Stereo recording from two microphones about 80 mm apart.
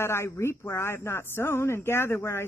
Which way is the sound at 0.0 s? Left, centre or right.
Left.